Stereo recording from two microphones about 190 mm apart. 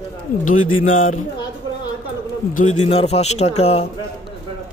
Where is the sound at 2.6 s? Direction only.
35° left (ahead or behind).